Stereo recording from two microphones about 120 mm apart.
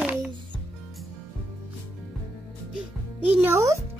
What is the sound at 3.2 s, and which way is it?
Speech, 20° right (ahead or behind).